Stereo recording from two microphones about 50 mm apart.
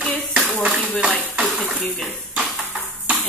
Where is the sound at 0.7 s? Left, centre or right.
Left.